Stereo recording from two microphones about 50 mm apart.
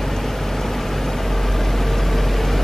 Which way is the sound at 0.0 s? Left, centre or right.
Centre.